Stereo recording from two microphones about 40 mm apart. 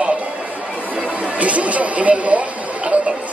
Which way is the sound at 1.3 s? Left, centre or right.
Right.